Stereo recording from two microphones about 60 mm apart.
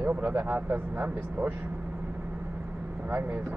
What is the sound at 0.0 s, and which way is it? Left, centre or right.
Speech, right.